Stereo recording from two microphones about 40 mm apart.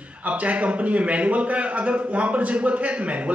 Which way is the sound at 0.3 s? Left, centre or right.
Right.